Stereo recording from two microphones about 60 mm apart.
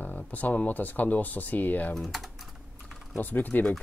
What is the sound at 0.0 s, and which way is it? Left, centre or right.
Speech, left.